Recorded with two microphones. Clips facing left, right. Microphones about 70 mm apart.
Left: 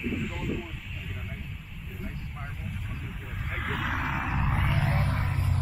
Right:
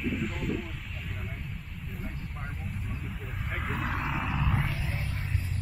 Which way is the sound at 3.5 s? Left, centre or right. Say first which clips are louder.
Left 2 dB; centre.